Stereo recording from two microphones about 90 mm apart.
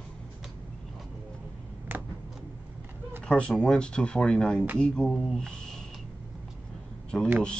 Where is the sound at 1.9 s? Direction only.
20° right (ahead or behind).